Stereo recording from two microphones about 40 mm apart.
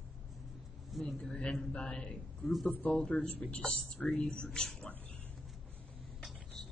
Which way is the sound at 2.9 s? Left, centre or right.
Left.